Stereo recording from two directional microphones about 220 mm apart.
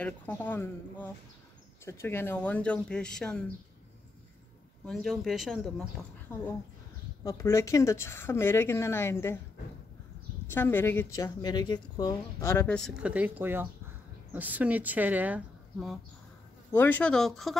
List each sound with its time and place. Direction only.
0.0 s a woman's voice: 10° left (ahead or behind)
4.8 s speech: centre (ahead or behind)
7.2 s a woman's voice: 15° left (ahead or behind)
10.4 s a woman's voice: 10° left (ahead or behind)
16.7 s speech: 10° left (ahead or behind)